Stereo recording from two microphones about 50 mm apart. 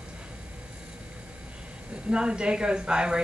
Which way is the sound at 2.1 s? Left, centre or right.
Centre.